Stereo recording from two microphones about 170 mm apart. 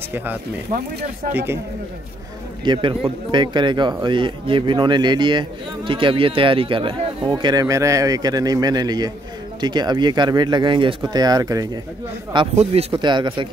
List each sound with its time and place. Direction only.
0.1 s speech: 10° right (ahead or behind)
2.6 s speech: 30° right (ahead or behind)
12.5 s speech: 35° right (ahead or behind)